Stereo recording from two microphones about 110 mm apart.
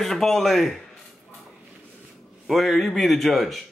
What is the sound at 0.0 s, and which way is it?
Speech, centre (ahead or behind).